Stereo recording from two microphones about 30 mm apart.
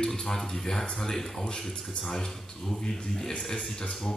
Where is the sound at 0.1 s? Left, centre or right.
Centre.